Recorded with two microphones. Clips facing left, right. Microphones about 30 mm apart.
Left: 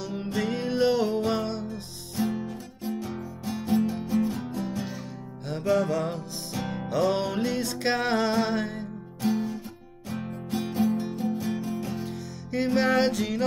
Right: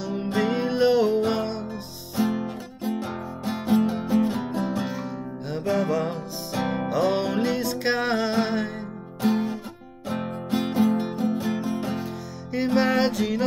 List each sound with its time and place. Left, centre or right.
0.0 s music: centre
2.1 s music: right
2.4 s music: right
5.7 s music: centre
6.5 s music: right
6.9 s music: centre
9.2 s music: right
12.7 s music: centre